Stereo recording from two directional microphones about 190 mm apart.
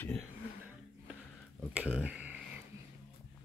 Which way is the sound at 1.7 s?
5° right (ahead or behind).